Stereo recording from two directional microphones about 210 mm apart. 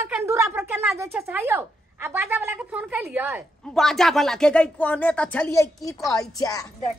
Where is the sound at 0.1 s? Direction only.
10° right (ahead or behind).